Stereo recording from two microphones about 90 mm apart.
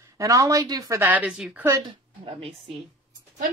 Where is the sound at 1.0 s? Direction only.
20° right (ahead or behind).